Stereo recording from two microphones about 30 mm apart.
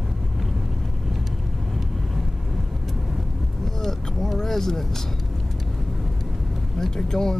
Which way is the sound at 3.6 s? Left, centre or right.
Centre.